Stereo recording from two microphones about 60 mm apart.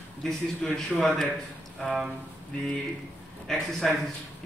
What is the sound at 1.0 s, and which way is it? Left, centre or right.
Speech, centre.